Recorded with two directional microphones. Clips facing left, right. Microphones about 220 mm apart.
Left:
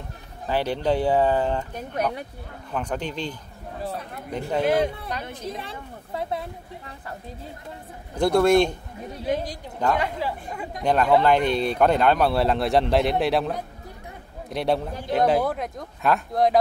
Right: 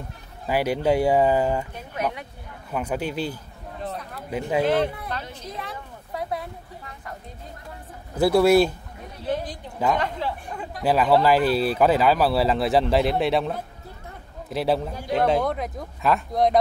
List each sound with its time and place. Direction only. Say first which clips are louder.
0.5 s speech: right 2 dB; 10° right (ahead or behind)
2.7 s speech: right 2 dB; 10° right (ahead or behind)
4.6 s speech: left 2 dB; 10° left (ahead or behind)
5.2 s a woman's voice: left 4 dB; 55° left (ahead or behind)
5.5 s speech: left 1 dB; 30° left (ahead or behind)
8.2 s speech: right 1 dB; 5° right (ahead or behind)
9.2 s speech: left 1 dB; 10° left (ahead or behind)
10.8 s speech: even; 5° right (ahead or behind)